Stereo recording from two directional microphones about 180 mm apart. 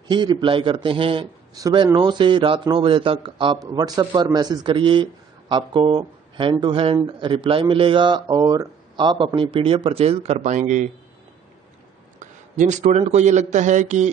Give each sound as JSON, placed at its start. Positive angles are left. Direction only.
{"t": 0.1, "sound": "a man's voice", "side_deg": -25}
{"t": 12.2, "sound": "a sound", "side_deg": -40}
{"t": 13.0, "sound": "a man's voice", "side_deg": -40}